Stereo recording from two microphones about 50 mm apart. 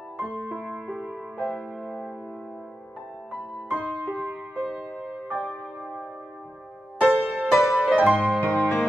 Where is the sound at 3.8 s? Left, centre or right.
Centre.